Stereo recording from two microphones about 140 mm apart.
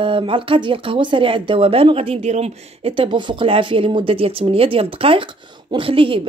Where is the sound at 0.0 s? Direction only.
40° right (ahead or behind).